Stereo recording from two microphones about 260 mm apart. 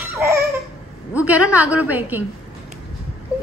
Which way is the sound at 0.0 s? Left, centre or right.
Centre.